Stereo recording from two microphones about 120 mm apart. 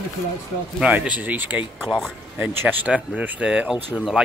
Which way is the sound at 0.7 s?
10° right (ahead or behind).